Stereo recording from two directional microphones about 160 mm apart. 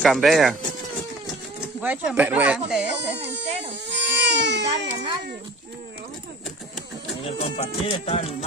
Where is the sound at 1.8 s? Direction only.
10° right (ahead or behind).